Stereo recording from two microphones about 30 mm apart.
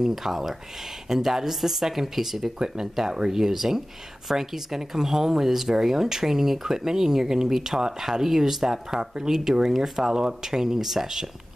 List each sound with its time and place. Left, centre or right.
0.1 s speech: centre
2.6 s speech: right